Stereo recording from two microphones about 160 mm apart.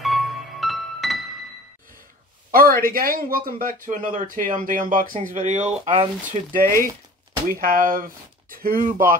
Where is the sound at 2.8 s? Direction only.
65° right (ahead or behind).